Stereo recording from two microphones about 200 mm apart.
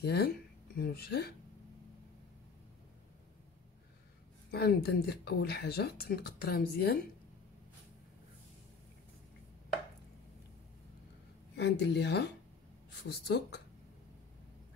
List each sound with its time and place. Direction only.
0.0 s speech: 50° left (ahead or behind)
4.5 s speech: 55° left (ahead or behind)
11.5 s speech: 60° left (ahead or behind)